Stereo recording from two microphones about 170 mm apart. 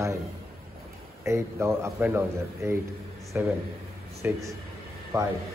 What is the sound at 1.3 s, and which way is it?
A man's voice, 15° right (ahead or behind).